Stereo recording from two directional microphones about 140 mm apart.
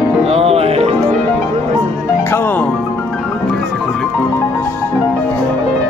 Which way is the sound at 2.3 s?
15° left (ahead or behind).